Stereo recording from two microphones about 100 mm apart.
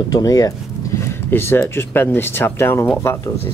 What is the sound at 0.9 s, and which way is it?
Speech, 20° left (ahead or behind).